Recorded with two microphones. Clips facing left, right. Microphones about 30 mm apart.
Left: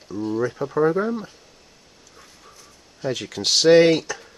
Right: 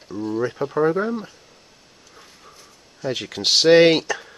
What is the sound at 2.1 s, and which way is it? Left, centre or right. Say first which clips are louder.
Train: right 1 dB; centre.